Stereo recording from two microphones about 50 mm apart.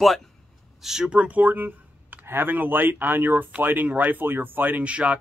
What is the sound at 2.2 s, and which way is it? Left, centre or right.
Speech, right.